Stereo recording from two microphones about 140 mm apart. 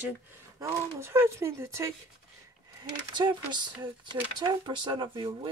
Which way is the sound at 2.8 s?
35° right (ahead or behind).